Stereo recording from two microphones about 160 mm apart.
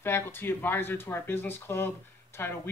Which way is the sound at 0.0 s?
15° left (ahead or behind).